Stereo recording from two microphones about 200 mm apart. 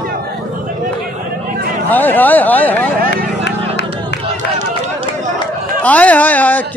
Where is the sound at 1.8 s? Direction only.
10° left (ahead or behind).